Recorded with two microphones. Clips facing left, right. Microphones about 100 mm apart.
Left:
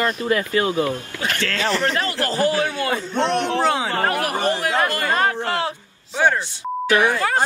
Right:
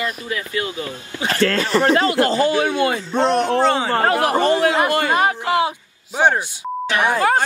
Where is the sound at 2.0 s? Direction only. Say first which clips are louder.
Right 6 dB; 20° right (ahead or behind).